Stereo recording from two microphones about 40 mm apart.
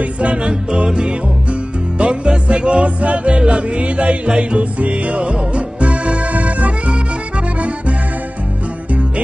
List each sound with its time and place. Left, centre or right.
0.0 s music: right